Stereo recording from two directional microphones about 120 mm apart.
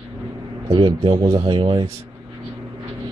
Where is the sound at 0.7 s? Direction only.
45° right (ahead or behind).